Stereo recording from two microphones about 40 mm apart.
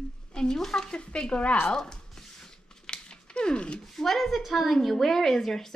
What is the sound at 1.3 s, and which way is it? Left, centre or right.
Speech, left.